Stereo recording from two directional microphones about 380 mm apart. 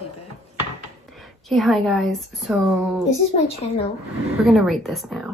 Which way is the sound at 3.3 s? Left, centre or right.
Centre.